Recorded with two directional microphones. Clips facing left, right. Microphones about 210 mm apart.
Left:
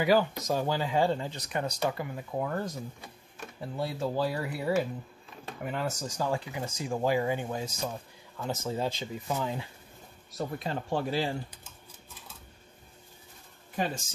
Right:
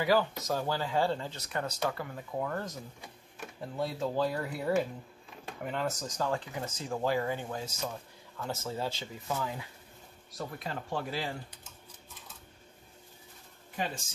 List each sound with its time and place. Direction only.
0.0 s speech: 15° left (ahead or behind)